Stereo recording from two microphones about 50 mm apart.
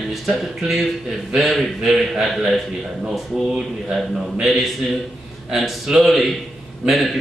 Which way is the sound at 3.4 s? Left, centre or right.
Centre.